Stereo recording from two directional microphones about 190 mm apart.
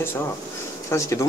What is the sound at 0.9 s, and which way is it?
Speech, 15° left (ahead or behind).